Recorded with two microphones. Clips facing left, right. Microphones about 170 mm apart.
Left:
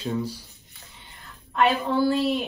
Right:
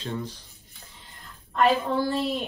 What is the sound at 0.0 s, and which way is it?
A woman's voice, 10° left (ahead or behind).